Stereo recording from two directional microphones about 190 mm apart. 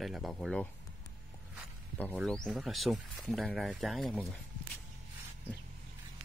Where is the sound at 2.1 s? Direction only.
Centre (ahead or behind).